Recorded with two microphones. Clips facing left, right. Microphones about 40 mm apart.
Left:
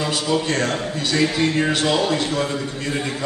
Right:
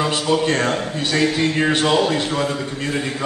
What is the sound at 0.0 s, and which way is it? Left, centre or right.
A man's voice, centre.